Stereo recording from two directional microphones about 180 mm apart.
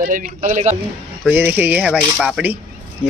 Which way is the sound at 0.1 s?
45° right (ahead or behind).